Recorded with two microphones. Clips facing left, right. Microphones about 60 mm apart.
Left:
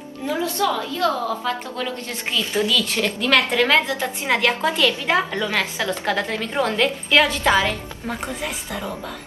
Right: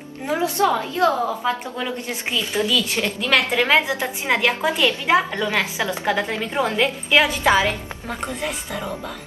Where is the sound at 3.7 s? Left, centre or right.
Centre.